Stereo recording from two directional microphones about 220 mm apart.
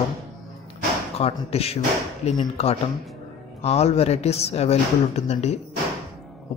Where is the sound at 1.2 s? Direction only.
25° left (ahead or behind).